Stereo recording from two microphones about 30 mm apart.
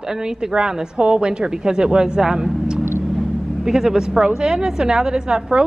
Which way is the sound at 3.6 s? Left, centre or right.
Centre.